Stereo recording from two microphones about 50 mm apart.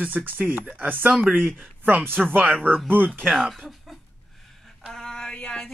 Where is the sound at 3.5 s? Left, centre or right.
Centre.